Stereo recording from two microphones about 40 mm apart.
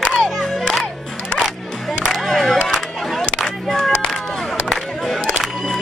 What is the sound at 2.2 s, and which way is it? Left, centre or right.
Music, centre.